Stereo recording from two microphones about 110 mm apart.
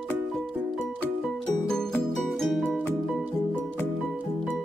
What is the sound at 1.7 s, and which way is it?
Music, 5° left (ahead or behind).